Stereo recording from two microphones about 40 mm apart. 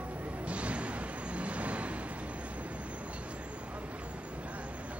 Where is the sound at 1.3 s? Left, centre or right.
Right.